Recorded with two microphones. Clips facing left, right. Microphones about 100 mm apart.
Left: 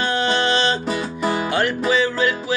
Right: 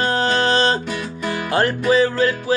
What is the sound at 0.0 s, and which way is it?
Music, 35° right (ahead or behind).